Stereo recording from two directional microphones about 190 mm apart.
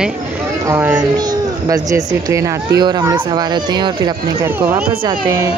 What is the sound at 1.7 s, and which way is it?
Speech, 20° right (ahead or behind).